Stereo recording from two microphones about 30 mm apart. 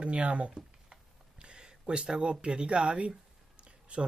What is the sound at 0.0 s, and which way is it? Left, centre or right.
Speech, right.